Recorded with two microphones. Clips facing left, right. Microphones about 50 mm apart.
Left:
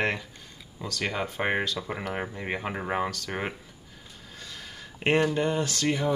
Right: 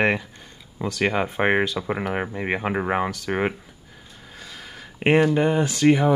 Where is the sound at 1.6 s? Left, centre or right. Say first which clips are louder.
Right 6 dB; centre.